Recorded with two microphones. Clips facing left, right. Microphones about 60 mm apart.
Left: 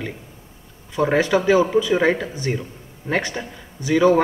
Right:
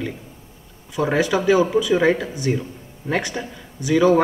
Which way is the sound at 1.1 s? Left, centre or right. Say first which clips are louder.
Left 1 dB; left.